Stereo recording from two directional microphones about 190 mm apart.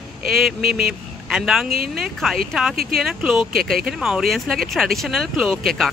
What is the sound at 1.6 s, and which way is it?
Speech, 50° right (ahead or behind).